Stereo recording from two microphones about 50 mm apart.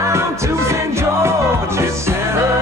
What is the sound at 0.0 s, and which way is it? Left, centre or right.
Music, right.